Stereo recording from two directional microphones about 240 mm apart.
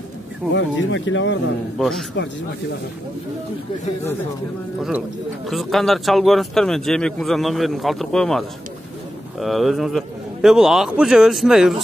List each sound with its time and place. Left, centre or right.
0.6 s speech: left
1.8 s a man's voice: centre
5.5 s a man's voice: centre